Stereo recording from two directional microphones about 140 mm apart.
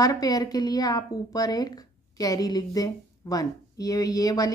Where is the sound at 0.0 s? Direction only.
25° left (ahead or behind).